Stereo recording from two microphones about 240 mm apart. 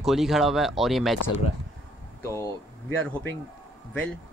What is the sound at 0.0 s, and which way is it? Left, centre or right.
Speech, centre.